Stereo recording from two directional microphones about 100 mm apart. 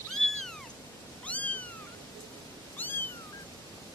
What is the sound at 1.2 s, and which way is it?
Cat, 15° left (ahead or behind).